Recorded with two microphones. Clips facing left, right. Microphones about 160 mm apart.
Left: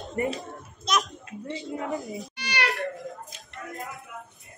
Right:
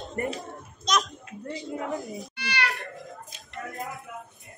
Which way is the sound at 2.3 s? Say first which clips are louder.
Even; 15° left (ahead or behind).